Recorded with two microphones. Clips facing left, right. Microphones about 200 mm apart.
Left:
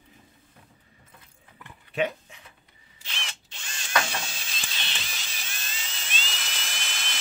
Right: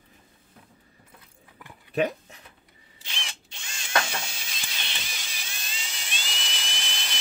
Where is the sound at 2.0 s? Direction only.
40° right (ahead or behind).